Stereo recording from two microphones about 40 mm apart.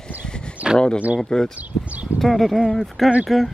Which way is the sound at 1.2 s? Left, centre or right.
Centre.